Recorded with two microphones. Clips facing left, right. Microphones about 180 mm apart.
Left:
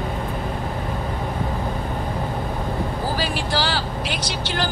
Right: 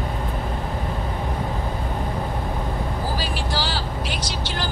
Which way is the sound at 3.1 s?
65° left (ahead or behind).